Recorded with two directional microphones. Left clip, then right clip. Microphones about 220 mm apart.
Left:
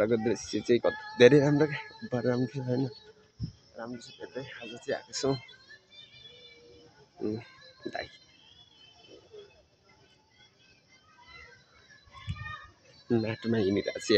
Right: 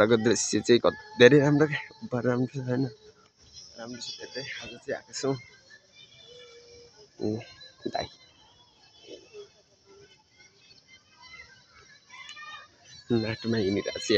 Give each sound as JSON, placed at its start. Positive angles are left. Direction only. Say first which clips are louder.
{"t": 0.0, "sound": "speech", "louder": "right 5 dB", "side_deg": -15}
{"t": 7.2, "sound": "speech", "louder": "right 3 dB", "side_deg": -10}
{"t": 13.1, "sound": "speech", "louder": "right 1 dB", "side_deg": 0}